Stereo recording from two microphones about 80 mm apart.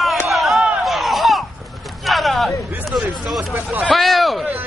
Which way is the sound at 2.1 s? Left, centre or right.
Centre.